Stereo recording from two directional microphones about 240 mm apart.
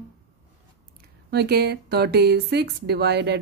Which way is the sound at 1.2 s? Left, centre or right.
Right.